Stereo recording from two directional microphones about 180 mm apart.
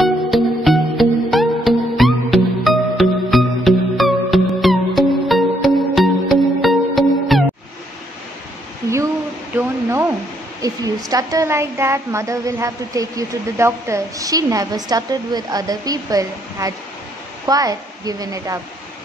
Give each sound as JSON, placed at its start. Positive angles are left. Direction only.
{"t": 0.3, "sound": "music", "side_deg": 0}
{"t": 9.6, "sound": "hair dryer", "side_deg": -15}
{"t": 11.1, "sound": "a woman's voice", "side_deg": -20}